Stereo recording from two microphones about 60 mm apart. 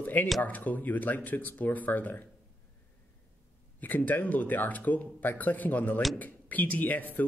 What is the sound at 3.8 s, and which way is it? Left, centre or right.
Speech, left.